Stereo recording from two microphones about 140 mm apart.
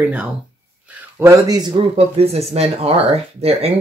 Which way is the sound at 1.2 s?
25° right (ahead or behind).